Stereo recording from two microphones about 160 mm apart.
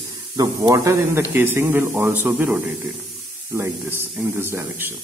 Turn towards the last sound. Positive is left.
turn(degrees=-15)  # may be behind; listen again after turning